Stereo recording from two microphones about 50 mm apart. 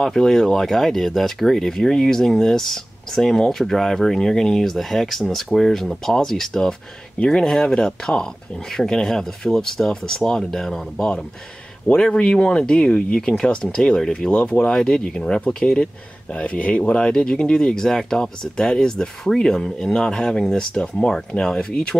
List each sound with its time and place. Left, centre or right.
0.0 s speech: centre